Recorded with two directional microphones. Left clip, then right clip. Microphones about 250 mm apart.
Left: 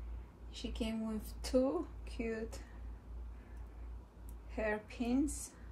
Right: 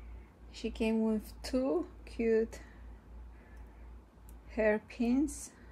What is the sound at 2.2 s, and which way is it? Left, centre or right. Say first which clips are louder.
Speech: right 11 dB; right.